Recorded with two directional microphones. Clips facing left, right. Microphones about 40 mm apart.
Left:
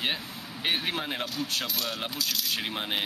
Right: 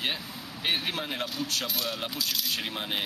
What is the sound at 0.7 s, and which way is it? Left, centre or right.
Speech, centre.